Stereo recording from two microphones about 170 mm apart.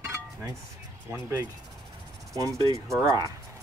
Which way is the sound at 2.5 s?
5° left (ahead or behind).